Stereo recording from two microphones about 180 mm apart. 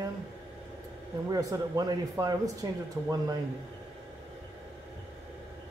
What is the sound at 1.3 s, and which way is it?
Speech, 20° right (ahead or behind).